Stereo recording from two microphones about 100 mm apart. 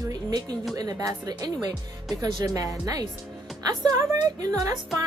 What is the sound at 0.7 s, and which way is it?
A woman's voice, 40° right (ahead or behind).